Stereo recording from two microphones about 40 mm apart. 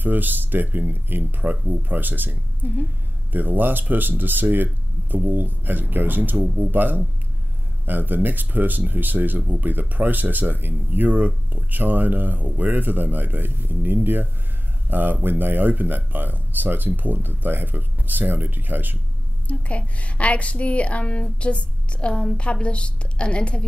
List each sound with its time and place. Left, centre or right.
0.0 s speech: right
1.4 s speech: right
11.1 s speech: right
19.4 s a woman's voice: left